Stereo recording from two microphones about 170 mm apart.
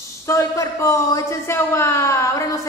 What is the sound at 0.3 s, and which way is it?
A woman's voice, 15° left (ahead or behind).